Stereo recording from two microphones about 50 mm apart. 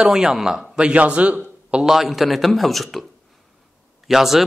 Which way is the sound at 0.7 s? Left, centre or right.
Right.